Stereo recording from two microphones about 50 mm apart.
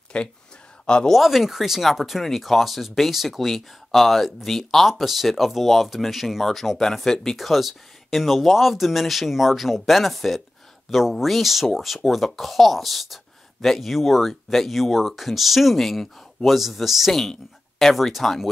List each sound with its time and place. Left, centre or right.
0.1 s speech: centre
1.1 s speech: centre